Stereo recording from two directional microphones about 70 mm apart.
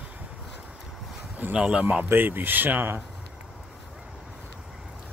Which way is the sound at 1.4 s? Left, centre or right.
Right.